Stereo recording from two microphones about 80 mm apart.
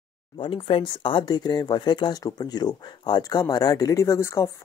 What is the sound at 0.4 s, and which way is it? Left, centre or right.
Speech, left.